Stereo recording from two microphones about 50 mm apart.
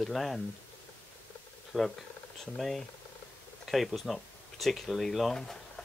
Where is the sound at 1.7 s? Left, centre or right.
Centre.